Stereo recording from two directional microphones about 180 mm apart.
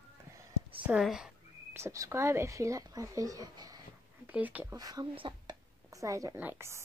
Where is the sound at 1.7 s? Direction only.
15° right (ahead or behind).